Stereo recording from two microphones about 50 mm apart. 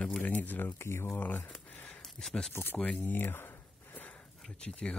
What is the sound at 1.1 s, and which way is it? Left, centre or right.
Speech, left.